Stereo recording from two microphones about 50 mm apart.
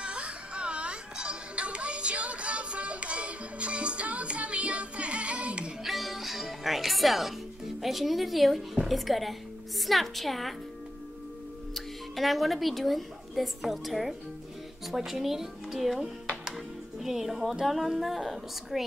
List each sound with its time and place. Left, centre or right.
0.0 s music: right
5.9 s music: centre
8.8 s speech: centre
11.7 s speech: centre